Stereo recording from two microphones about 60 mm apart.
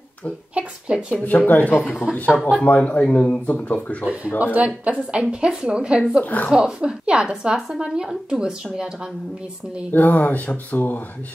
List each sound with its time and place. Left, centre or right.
0.6 s a woman's voice: centre
1.1 s speech: left
4.0 s a woman's voice: right
6.2 s speech: left
6.5 s a woman's voice: centre
9.9 s speech: left